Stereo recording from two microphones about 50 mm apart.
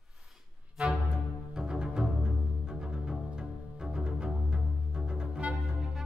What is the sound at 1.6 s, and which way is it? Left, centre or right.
Music, centre.